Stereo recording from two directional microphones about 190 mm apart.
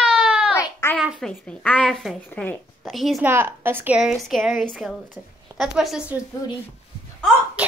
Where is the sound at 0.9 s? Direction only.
Centre (ahead or behind).